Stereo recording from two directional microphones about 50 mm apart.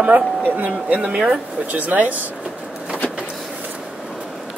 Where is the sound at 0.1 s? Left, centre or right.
Right.